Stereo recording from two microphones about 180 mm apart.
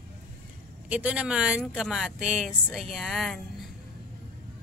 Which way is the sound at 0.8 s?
5° right (ahead or behind).